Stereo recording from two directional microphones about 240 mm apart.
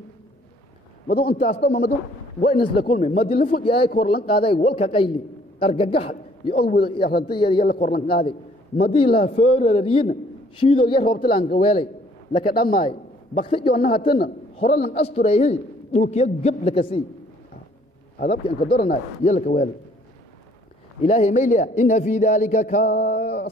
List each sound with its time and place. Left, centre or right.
1.1 s a man's voice: left
3.3 s a man's voice: left
3.6 s a man's voice: left
6.6 s a man's voice: left
7.2 s a man's voice: left
7.6 s a man's voice: left
8.3 s a man's voice: left
11.3 s a man's voice: left
11.6 s a man's voice: left
12.5 s a man's voice: left
13.4 s a man's voice: left
18.2 s a man's voice: left
21.0 s a man's voice: left